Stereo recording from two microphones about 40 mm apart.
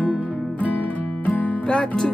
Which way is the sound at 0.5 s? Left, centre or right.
Left.